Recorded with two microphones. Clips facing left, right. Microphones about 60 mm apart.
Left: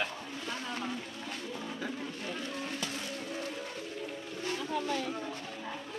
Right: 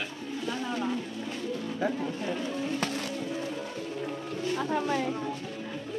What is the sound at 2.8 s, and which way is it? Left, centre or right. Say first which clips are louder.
Vehicle: right 7 dB; right.